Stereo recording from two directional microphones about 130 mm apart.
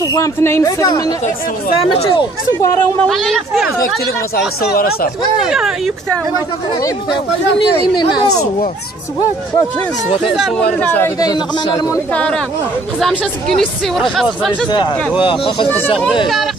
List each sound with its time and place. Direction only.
0.0 s speech: 25° left (ahead or behind)
3.0 s speech: 5° left (ahead or behind)
5.5 s speech: 5° right (ahead or behind)
10.2 s speech: centre (ahead or behind)
11.1 s speech: 30° left (ahead or behind)
12.1 s speech: 10° left (ahead or behind)
15.2 s speech: 45° left (ahead or behind)